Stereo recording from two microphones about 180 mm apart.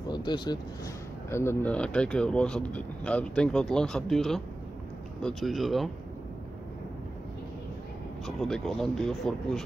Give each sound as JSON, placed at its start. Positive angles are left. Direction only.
{"t": 0.1, "sound": "speech", "side_deg": 25}
{"t": 8.4, "sound": "speech", "side_deg": 0}